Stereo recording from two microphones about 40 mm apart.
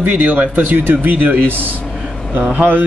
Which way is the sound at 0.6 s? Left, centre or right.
Right.